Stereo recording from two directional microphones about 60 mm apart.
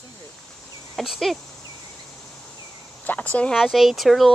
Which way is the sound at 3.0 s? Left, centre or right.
Left.